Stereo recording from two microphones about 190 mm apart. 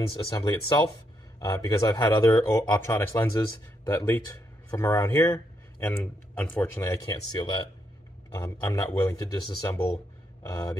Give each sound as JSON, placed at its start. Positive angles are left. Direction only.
{"t": 0.4, "sound": "speech", "side_deg": 20}
{"t": 8.3, "sound": "speech", "side_deg": 15}